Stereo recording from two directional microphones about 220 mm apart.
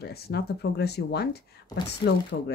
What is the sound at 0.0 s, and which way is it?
Speech, 45° left (ahead or behind).